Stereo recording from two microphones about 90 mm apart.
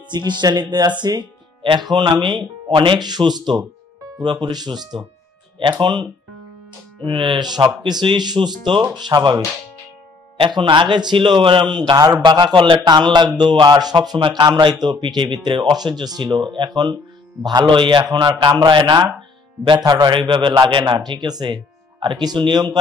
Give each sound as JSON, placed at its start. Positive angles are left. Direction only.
{"t": 0.1, "sound": "a man's voice", "side_deg": -55}
{"t": 7.1, "sound": "a man's voice", "side_deg": -60}
{"t": 10.4, "sound": "a man's voice", "side_deg": -60}
{"t": 19.8, "sound": "speech", "side_deg": -45}
{"t": 20.1, "sound": "a man's voice", "side_deg": -65}
{"t": 20.8, "sound": "speech", "side_deg": -50}